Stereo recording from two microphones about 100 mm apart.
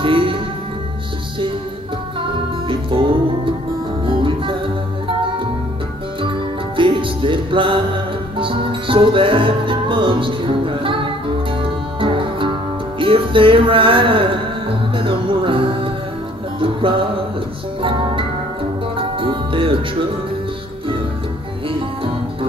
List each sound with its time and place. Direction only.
0.0 s music: 60° right (ahead or behind)
2.1 s music: 60° right (ahead or behind)
21.6 s music: 60° right (ahead or behind)